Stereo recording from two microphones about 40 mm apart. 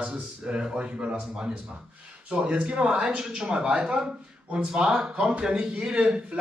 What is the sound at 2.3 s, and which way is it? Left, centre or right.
A man's voice, right.